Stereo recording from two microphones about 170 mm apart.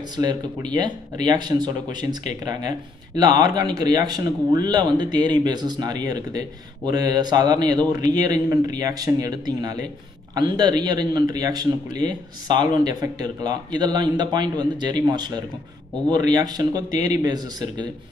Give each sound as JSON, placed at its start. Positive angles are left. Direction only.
{"t": 0.2, "sound": "speech", "side_deg": -25}